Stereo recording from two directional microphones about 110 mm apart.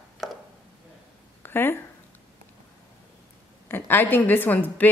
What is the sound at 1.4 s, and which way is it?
Speech, 20° left (ahead or behind).